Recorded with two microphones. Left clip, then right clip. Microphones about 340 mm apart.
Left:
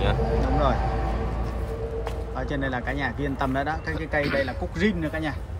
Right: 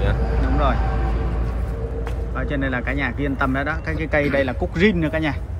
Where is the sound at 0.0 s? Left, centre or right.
Left.